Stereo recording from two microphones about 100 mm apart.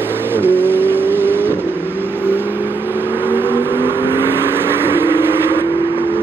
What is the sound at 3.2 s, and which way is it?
Vehicle, 20° right (ahead or behind).